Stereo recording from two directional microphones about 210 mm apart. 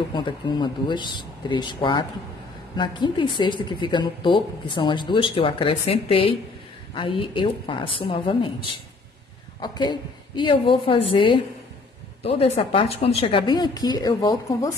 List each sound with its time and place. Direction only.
0.1 s a woman's voice: 20° left (ahead or behind)
9.6 s a woman's voice: 20° left (ahead or behind)